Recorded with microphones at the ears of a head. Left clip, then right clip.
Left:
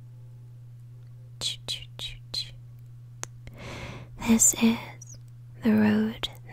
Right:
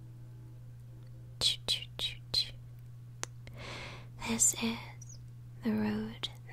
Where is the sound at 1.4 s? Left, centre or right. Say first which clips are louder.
Right 1 dB; centre.